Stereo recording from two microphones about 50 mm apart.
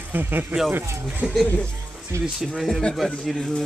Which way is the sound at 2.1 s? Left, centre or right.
Right.